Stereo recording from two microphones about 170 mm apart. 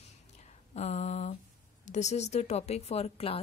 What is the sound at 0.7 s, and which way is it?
A woman's voice, 40° left (ahead or behind).